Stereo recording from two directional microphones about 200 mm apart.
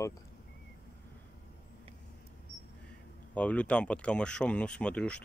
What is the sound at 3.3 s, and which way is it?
Speech, 5° left (ahead or behind).